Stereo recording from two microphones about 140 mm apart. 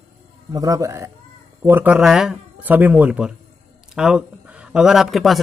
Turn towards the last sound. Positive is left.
turn(degrees=0)  # may be behind; listen again after turning